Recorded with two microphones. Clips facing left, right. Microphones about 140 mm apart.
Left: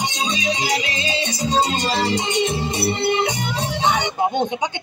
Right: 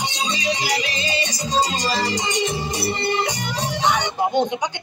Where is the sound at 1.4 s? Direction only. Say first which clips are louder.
Left 2 dB; 55° left (ahead or behind).